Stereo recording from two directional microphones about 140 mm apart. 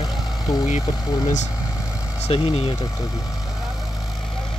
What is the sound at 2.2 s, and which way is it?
Speech, 45° left (ahead or behind).